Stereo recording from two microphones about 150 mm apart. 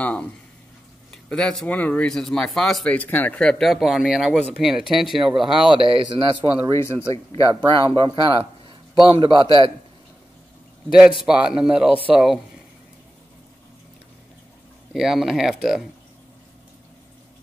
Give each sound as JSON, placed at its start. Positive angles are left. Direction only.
{"t": 0.0, "sound": "speech", "side_deg": 10}
{"t": 5.8, "sound": "a man's voice", "side_deg": -35}
{"t": 6.7, "sound": "speech", "side_deg": 15}
{"t": 7.9, "sound": "a man's voice", "side_deg": -35}
{"t": 10.9, "sound": "speech", "side_deg": -5}
{"t": 14.9, "sound": "speech", "side_deg": 0}